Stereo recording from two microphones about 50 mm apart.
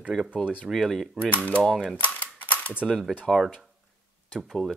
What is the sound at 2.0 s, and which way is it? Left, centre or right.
Typewriter, left.